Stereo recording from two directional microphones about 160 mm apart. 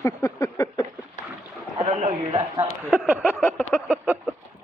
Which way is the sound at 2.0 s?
40° right (ahead or behind).